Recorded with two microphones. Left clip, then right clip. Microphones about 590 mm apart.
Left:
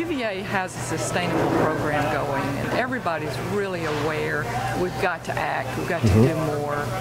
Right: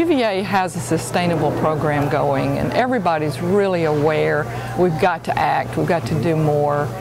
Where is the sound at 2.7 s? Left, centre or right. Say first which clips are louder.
Right 8 dB; right.